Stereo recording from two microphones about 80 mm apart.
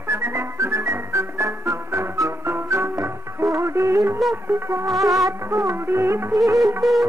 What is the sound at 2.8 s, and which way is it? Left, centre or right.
Music, right.